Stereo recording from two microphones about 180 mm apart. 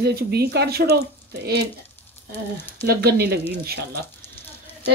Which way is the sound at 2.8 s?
60° right (ahead or behind).